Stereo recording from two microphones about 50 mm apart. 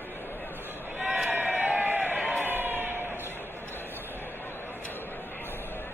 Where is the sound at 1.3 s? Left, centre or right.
Right.